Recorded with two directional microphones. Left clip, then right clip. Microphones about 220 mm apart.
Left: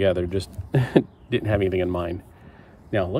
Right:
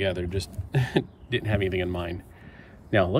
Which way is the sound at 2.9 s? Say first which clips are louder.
Right 2 dB; centre (ahead or behind).